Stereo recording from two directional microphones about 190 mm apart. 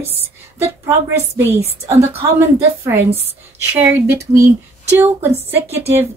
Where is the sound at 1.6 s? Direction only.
35° right (ahead or behind).